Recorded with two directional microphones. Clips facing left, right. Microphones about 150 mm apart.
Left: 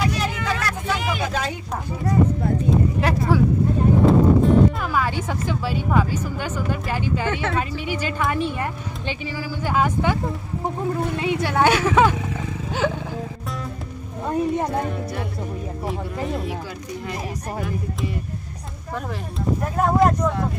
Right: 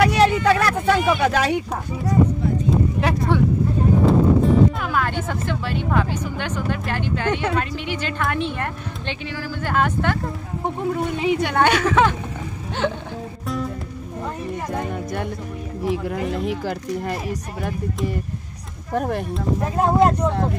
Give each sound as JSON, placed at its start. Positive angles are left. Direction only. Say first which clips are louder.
{"t": 0.0, "sound": "a sound", "louder": "right 8 dB", "side_deg": -65}
{"t": 1.2, "sound": "speech", "louder": "right 7 dB", "side_deg": -75}
{"t": 2.7, "sound": "a sound", "louder": "even", "side_deg": 0}
{"t": 4.0, "sound": "music", "louder": "left 1 dB", "side_deg": 0}
{"t": 5.5, "sound": "speech", "louder": "left 1 dB", "side_deg": 5}
{"t": 11.4, "sound": "speech", "louder": "left 2 dB", "side_deg": 5}
{"t": 12.8, "sound": "music", "louder": "even", "side_deg": 0}
{"t": 18.9, "sound": "speech", "louder": "right 8 dB", "side_deg": -55}
{"t": 19.8, "sound": "speech", "louder": "right 1 dB", "side_deg": -30}